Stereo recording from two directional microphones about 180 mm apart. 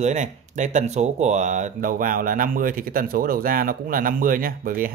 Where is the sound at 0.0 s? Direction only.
40° right (ahead or behind).